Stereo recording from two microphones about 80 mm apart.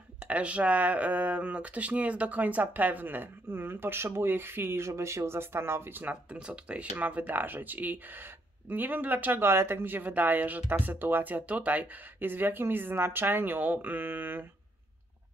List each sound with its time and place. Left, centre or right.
0.2 s speech: centre